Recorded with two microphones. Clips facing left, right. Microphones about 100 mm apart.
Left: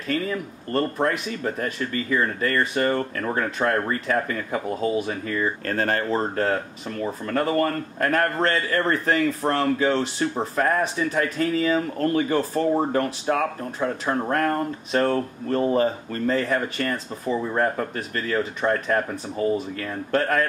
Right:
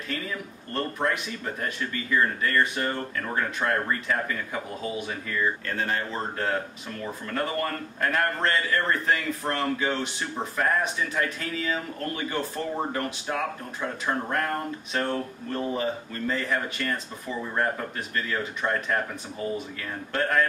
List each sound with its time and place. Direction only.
0.9 s a man's voice: 35° left (ahead or behind)